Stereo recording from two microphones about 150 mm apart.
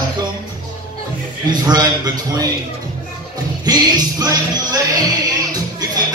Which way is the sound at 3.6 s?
25° right (ahead or behind).